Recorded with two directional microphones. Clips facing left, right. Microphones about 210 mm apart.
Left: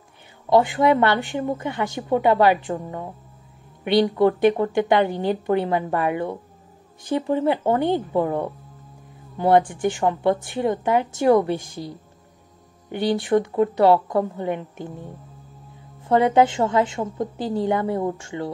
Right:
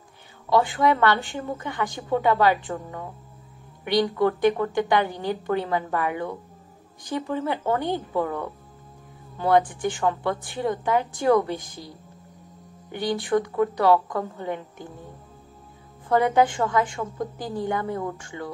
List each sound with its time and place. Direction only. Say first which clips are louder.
0.5 s a woman's voice: left 4 dB; 20° left (ahead or behind)
12.9 s a woman's voice: left 4 dB; 25° left (ahead or behind)
16.1 s a woman's voice: left 3 dB; 25° left (ahead or behind)